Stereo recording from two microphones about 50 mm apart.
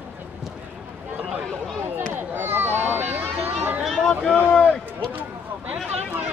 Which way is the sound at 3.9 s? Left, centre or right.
Centre.